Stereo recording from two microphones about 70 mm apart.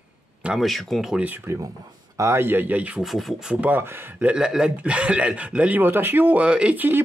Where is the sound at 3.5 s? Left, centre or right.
Right.